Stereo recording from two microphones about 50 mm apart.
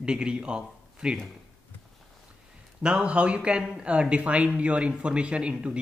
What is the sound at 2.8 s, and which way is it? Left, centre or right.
Speech, centre.